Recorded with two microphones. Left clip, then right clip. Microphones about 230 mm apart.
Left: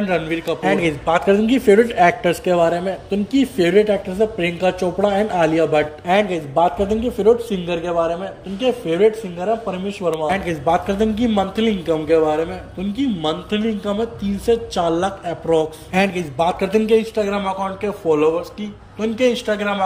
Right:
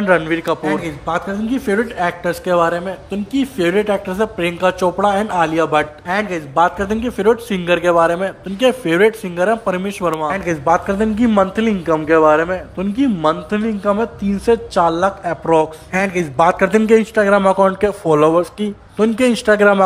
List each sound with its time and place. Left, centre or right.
0.0 s a man's voice: centre
1.0 s a man's voice: centre
7.8 s a man's voice: right
8.1 s a man's voice: centre